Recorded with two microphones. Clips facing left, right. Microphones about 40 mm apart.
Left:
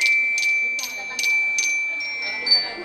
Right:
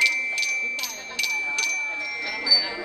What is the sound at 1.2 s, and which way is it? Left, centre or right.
Wind chime, right.